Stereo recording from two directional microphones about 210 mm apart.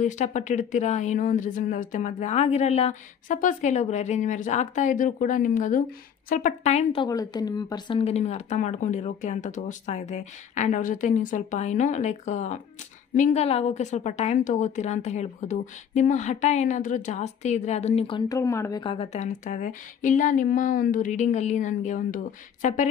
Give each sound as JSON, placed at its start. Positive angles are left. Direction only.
{"t": 0.0, "sound": "a woman's voice", "side_deg": 35}